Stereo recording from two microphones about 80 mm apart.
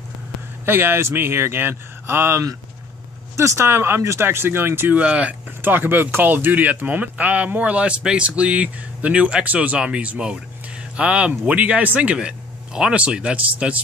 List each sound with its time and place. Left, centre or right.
0.7 s speech: right
5.0 s speech: centre